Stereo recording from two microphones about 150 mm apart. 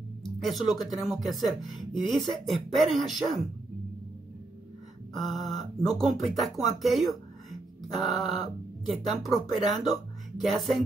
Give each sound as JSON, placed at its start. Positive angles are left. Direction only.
{"t": 0.2, "sound": "music", "side_deg": 0}
{"t": 0.8, "sound": "speech", "side_deg": 0}
{"t": 5.1, "sound": "speech", "side_deg": 0}
{"t": 5.8, "sound": "speech", "side_deg": 25}
{"t": 6.0, "sound": "speech", "side_deg": 0}